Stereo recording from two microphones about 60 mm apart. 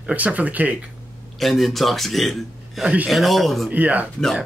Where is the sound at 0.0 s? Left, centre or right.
Right.